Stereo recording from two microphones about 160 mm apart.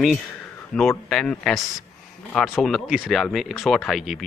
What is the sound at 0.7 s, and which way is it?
A man's voice, 5° left (ahead or behind).